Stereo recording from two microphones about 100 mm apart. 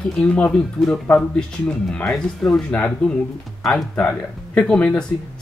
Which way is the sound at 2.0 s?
Centre (ahead or behind).